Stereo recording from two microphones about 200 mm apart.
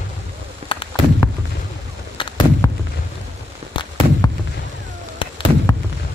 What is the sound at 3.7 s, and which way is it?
Fireworks, 25° left (ahead or behind).